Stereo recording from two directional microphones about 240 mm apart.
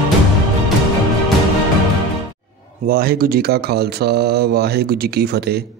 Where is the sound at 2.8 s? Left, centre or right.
Right.